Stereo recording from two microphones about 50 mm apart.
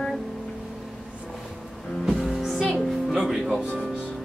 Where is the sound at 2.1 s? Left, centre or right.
Centre.